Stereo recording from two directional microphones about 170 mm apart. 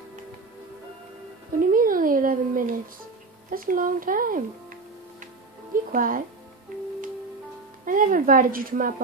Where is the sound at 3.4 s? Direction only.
55° right (ahead or behind).